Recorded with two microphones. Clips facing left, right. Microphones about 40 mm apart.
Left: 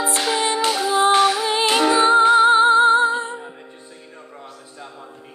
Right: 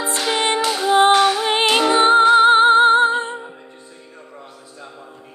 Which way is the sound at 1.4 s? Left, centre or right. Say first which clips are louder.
Right 1 dB; right.